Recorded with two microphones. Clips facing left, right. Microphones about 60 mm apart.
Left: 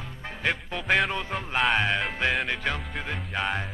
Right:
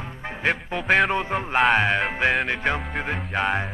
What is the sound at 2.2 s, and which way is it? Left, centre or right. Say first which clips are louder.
Music: right 4 dB; centre.